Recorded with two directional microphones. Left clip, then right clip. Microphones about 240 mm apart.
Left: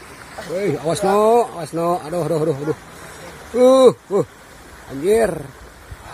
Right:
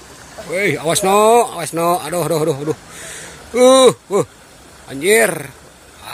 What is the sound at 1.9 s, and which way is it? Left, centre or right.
Speech, centre.